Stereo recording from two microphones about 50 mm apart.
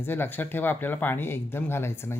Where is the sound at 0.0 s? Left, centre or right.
Left.